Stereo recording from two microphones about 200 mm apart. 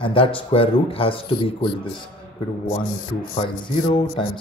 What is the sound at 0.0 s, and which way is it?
A man's voice, 25° left (ahead or behind).